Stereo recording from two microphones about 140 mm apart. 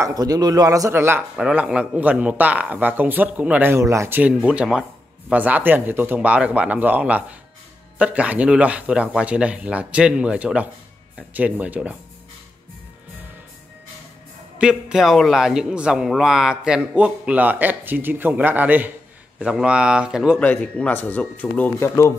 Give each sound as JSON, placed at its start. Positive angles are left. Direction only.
{"t": 0.0, "sound": "a man's voice", "side_deg": -25}
{"t": 14.6, "sound": "a man's voice", "side_deg": -5}
{"t": 20.3, "sound": "speech", "side_deg": 10}